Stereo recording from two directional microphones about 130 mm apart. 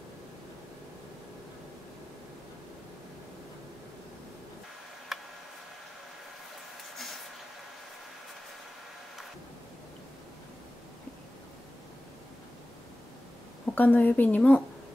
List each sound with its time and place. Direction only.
5.1 s tick: centre (ahead or behind)
7.0 s a sound: centre (ahead or behind)
13.7 s a woman's voice: 15° left (ahead or behind)